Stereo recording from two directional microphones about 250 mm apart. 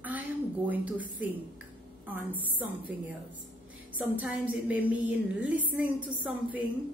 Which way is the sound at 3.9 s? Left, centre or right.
Centre.